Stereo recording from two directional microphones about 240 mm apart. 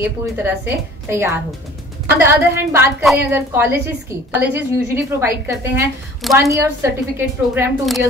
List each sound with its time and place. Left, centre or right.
0.0 s a woman's voice: centre
6.2 s a woman's voice: centre